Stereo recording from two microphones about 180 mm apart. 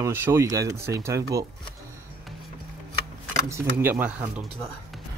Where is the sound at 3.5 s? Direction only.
10° right (ahead or behind).